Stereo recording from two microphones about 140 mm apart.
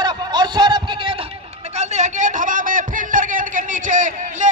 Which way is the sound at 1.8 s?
55° right (ahead or behind).